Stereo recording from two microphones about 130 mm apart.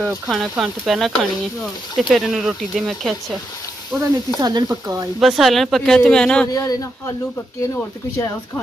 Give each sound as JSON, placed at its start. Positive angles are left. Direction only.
{"t": 0.0, "sound": "speech", "side_deg": 0}
{"t": 4.4, "sound": "speech", "side_deg": -30}
{"t": 5.2, "sound": "speech", "side_deg": 0}
{"t": 6.5, "sound": "speech", "side_deg": 25}